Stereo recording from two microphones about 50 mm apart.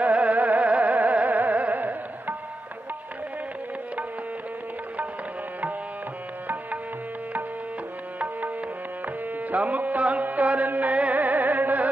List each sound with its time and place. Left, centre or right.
0.0 s music: right
6.4 s music: right
9.0 s music: right